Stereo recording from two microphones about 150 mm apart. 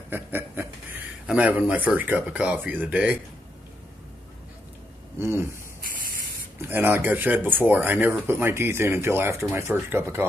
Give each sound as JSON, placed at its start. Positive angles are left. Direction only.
{"t": 0.1, "sound": "a sound", "side_deg": -15}
{"t": 1.2, "sound": "speech", "side_deg": -10}
{"t": 5.2, "sound": "speech", "side_deg": -15}
{"t": 6.6, "sound": "speech", "side_deg": -15}